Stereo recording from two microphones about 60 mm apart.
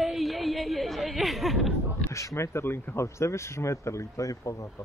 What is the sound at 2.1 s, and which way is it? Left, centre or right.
A man's voice, left.